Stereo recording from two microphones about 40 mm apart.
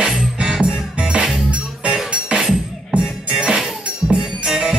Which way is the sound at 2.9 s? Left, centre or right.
Right.